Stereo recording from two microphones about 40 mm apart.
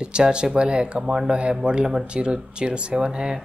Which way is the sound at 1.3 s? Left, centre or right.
Right.